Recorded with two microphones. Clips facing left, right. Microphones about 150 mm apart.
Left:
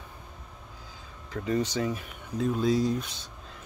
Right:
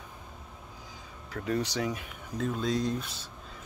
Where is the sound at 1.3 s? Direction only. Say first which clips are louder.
Left 3 dB; 5° right (ahead or behind).